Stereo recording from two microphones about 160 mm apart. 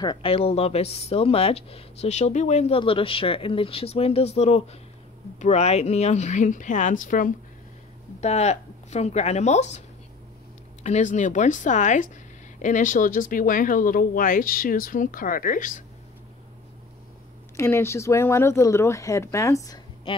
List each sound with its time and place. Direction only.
0.0 s speech: 30° left (ahead or behind)
2.8 s speech: 35° left (ahead or behind); by 7.3 s 55° left (ahead or behind)
8.2 s speech: 45° left (ahead or behind)
17.6 s speech: 15° left (ahead or behind)
20.1 s speech: 35° left (ahead or behind)